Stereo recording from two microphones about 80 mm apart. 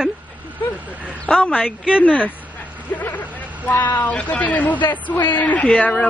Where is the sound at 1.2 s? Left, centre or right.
Centre.